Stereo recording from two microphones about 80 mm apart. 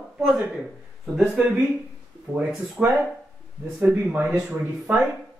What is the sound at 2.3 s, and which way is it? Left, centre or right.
Speech, right.